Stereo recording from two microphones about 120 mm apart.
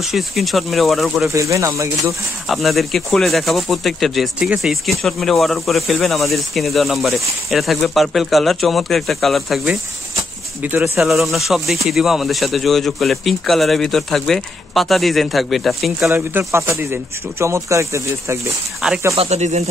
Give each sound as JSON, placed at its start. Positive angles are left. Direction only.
{"t": 0.0, "sound": "speech", "side_deg": 0}
{"t": 1.2, "sound": "speech", "side_deg": -25}
{"t": 2.4, "sound": "speech", "side_deg": 0}
{"t": 10.6, "sound": "speech", "side_deg": -15}
{"t": 11.0, "sound": "speech", "side_deg": 0}
{"t": 16.1, "sound": "speech", "side_deg": -20}
{"t": 18.8, "sound": "speech", "side_deg": -5}
{"t": 19.1, "sound": "speech", "side_deg": -65}